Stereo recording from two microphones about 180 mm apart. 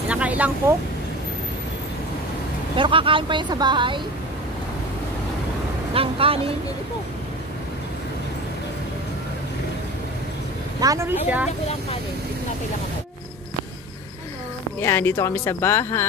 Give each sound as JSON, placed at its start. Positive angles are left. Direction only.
{"t": 0.1, "sound": "speech", "side_deg": -10}
{"t": 2.7, "sound": "speech", "side_deg": -30}
{"t": 5.9, "sound": "speech", "side_deg": -30}
{"t": 10.8, "sound": "speech", "side_deg": -15}
{"t": 14.8, "sound": "speech", "side_deg": 15}